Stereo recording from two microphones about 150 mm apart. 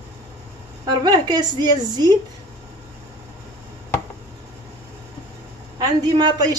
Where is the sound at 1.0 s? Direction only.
30° right (ahead or behind).